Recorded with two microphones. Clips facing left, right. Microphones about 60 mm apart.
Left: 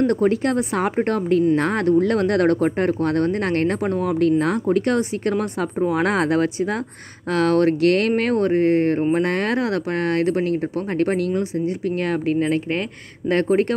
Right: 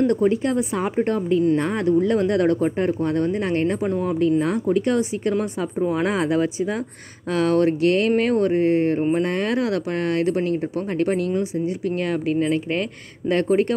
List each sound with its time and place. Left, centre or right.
0.1 s speech: left
8.2 s speech: left